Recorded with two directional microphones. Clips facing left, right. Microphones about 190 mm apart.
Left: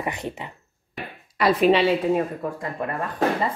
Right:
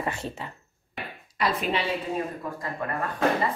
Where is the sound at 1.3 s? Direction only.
75° left (ahead or behind).